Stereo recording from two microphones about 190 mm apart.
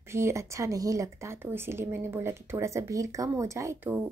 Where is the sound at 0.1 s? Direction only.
15° right (ahead or behind).